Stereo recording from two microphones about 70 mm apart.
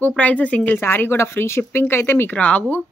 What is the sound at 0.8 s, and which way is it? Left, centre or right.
Speech, left.